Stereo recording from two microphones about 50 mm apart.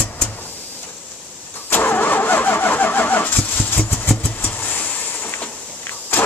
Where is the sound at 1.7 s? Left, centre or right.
Left.